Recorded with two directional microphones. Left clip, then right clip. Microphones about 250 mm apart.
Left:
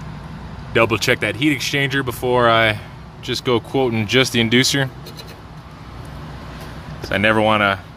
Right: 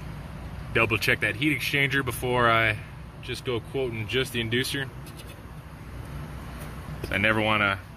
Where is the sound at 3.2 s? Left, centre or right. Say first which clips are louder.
Left 11 dB; left.